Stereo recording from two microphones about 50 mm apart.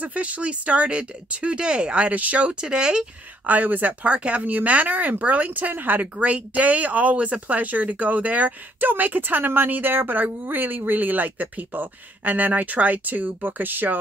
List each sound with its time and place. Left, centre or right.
0.0 s speech: right
2.6 s speech: centre
3.4 s speech: right
6.1 s speech: right